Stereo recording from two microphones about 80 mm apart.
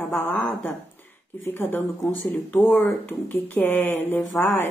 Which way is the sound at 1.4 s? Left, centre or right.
Left.